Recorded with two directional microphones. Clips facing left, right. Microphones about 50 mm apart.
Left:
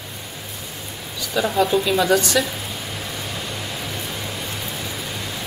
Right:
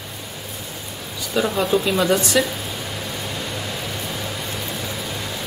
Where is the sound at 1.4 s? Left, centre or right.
Centre.